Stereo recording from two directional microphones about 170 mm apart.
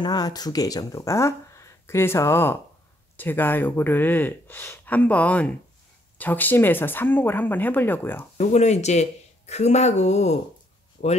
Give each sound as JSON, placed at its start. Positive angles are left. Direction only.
{"t": 0.0, "sound": "speech", "side_deg": 25}
{"t": 8.4, "sound": "speech", "side_deg": 40}
{"t": 11.0, "sound": "speech", "side_deg": 55}